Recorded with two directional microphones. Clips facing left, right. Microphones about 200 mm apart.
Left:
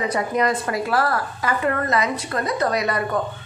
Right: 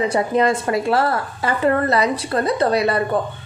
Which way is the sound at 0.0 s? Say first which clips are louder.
Right 4 dB; 30° right (ahead or behind).